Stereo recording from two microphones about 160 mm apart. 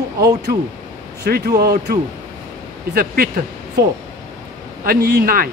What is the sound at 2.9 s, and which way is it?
Speech, 65° right (ahead or behind).